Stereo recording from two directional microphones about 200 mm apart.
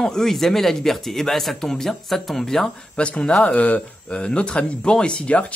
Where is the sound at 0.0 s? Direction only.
Centre (ahead or behind).